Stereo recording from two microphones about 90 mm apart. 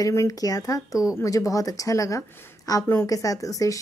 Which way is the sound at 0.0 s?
35° left (ahead or behind).